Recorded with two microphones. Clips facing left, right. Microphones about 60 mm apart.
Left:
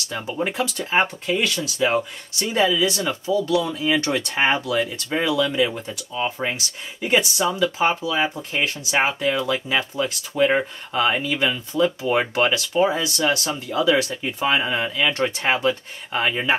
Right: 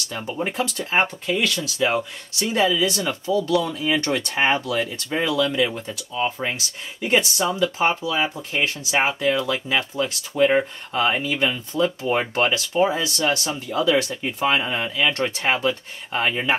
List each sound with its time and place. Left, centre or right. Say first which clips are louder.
0.5 s speech: left 1 dB; centre
3.4 s speech: even; centre
3.7 s speech: left 1 dB; centre
10.9 s speech: left 3 dB; centre